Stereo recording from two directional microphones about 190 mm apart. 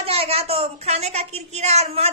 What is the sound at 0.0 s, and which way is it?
A woman's voice, 30° right (ahead or behind).